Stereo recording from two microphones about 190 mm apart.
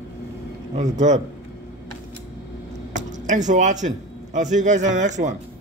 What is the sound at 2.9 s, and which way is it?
A man's voice, 40° right (ahead or behind).